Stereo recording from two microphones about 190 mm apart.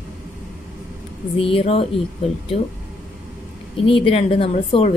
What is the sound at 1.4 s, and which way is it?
Speech, 30° left (ahead or behind).